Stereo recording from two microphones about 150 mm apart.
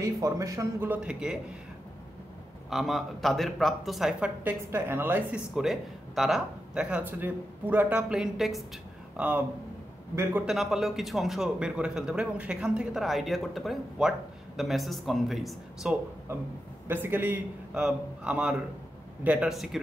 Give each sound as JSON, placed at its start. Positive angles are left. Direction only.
{"t": 0.0, "sound": "speech", "side_deg": -20}
{"t": 2.7, "sound": "a man's voice", "side_deg": 0}
{"t": 4.6, "sound": "speech", "side_deg": -15}
{"t": 10.4, "sound": "a man's voice", "side_deg": 0}
{"t": 16.8, "sound": "a man's voice", "side_deg": -15}